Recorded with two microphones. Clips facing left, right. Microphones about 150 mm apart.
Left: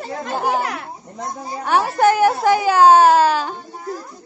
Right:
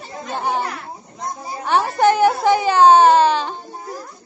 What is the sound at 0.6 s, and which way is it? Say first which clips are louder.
Speech: left 1 dB; 70° left (ahead or behind).